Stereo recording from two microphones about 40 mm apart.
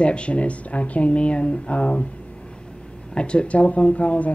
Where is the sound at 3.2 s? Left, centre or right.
Left.